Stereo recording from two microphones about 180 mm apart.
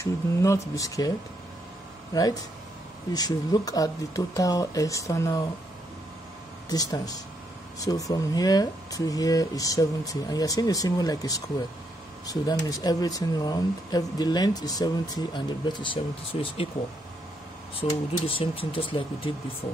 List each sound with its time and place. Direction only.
0.0 s speech: 20° left (ahead or behind)
3.1 s speech: 20° left (ahead or behind)
6.7 s speech: 20° left (ahead or behind)
17.7 s speech: 30° left (ahead or behind)